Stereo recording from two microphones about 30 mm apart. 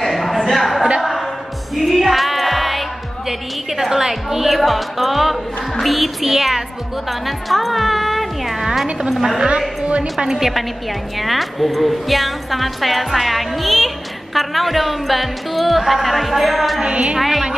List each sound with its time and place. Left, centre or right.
0.0 s a sound: centre
1.8 s music: centre
3.3 s a woman's voice: centre
10.1 s a woman's voice: centre
11.1 s a woman's voice: centre
16.8 s speech: right
17.2 s a woman's voice: centre